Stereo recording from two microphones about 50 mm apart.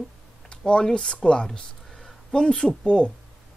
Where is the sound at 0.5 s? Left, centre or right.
Centre.